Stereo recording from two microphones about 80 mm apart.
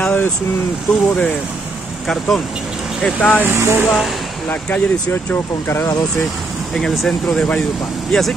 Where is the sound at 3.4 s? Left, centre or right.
Right.